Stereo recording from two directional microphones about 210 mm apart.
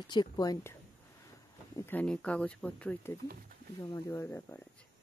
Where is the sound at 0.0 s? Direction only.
20° left (ahead or behind).